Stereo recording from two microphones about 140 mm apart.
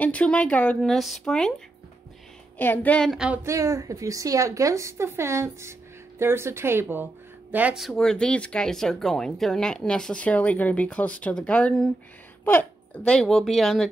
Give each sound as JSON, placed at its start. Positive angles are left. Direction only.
{"t": 0.0, "sound": "speech", "side_deg": 10}
{"t": 2.5, "sound": "speech", "side_deg": 10}
{"t": 3.4, "sound": "a woman's voice", "side_deg": -20}